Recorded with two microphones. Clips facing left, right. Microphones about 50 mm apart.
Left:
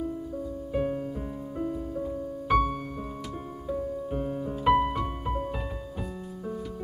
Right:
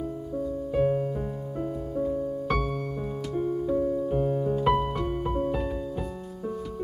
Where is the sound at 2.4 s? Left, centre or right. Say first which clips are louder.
Left 3 dB; centre.